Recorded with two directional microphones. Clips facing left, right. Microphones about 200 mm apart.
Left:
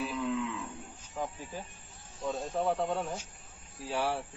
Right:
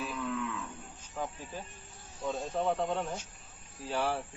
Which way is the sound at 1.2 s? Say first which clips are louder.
Left 1 dB; 10° left (ahead or behind).